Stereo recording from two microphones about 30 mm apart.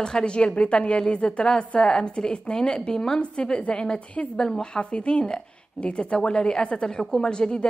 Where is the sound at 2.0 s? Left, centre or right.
Left.